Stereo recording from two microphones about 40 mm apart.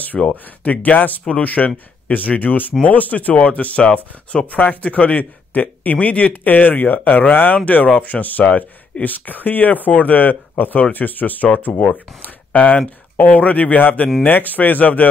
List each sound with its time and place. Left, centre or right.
0.3 s speech: left